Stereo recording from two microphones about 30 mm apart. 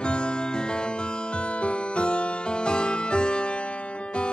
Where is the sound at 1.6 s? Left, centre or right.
Left.